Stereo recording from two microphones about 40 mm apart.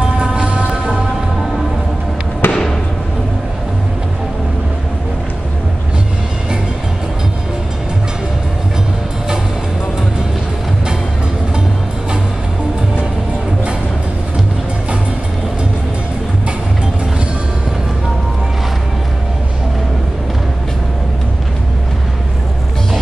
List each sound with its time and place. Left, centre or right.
0.0 s music: right
2.4 s fireworks: left